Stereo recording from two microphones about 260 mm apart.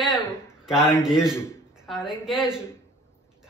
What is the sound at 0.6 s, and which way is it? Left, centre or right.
Speech, centre.